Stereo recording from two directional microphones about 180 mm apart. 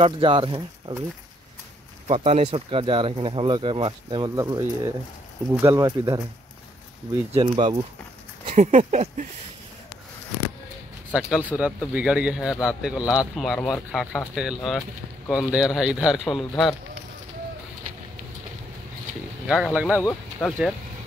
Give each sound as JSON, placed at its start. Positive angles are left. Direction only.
{"t": 0.0, "sound": "speech", "side_deg": -30}
{"t": 2.0, "sound": "speech", "side_deg": -35}
{"t": 7.3, "sound": "speech", "side_deg": -30}
{"t": 8.5, "sound": "speech", "side_deg": -40}
{"t": 11.1, "sound": "speech", "side_deg": -5}
{"t": 19.4, "sound": "speech", "side_deg": -5}
{"t": 20.4, "sound": "speech", "side_deg": 5}